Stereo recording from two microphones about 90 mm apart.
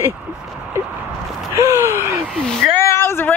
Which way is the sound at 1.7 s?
30° right (ahead or behind).